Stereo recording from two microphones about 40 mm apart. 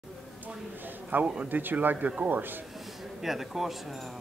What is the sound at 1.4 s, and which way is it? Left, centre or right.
Speech, right.